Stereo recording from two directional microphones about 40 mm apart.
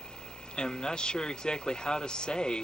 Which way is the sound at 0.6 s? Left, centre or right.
Centre.